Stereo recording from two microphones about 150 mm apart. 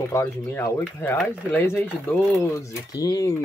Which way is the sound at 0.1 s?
15° left (ahead or behind).